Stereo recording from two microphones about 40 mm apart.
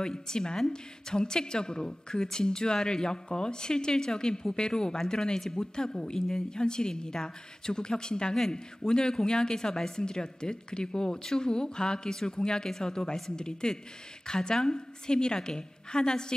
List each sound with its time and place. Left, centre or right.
0.0 s speech: centre